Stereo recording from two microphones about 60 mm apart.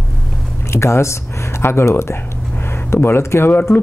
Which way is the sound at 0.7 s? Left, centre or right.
Left.